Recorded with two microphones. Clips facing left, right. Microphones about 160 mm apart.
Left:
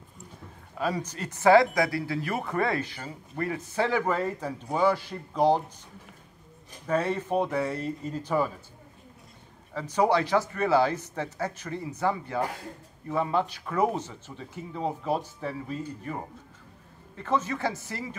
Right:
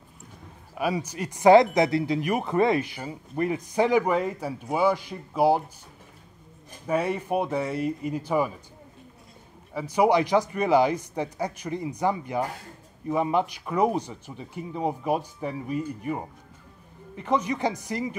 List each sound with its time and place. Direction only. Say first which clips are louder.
0.7 s speech: right 2 dB; 10° right (ahead or behind)
6.9 s speech: right 1 dB; 10° right (ahead or behind)
9.8 s speech: right 3 dB; 10° right (ahead or behind)